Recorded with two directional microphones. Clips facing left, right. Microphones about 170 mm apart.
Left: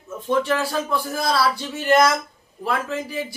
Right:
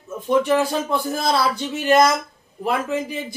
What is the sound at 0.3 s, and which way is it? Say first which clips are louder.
A man's voice: right 3 dB; 15° right (ahead or behind).